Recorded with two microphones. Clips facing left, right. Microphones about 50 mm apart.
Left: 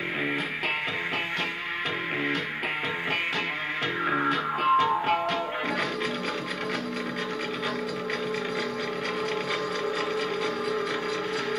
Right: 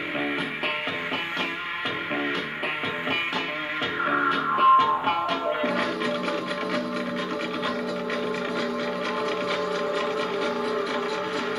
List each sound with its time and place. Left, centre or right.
4.3 s music: right